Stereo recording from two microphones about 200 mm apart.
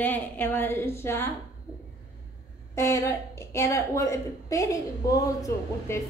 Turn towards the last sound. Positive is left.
turn(degrees=15)  # may be behind; listen again after turning